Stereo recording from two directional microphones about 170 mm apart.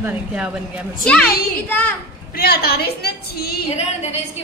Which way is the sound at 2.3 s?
65° left (ahead or behind).